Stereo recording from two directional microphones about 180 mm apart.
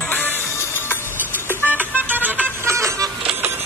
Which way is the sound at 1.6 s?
10° right (ahead or behind).